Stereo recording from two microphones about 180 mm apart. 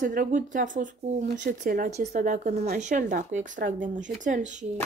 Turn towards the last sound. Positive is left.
turn(degrees=-40)  # may be behind; listen again after turning